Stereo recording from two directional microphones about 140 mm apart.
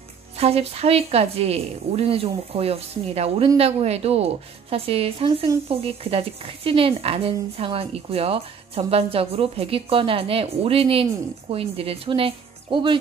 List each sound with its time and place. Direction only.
0.4 s a woman's voice: 45° right (ahead or behind)